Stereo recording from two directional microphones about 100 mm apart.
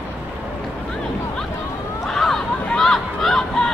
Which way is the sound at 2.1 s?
5° left (ahead or behind).